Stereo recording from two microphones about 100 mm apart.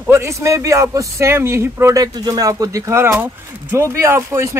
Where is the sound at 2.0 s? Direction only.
40° right (ahead or behind).